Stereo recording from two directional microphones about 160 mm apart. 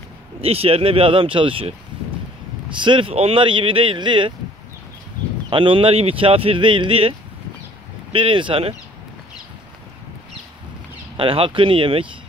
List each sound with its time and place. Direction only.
0.4 s speech: 35° right (ahead or behind)
5.5 s speech: 30° right (ahead or behind)
11.1 s speech: 35° right (ahead or behind)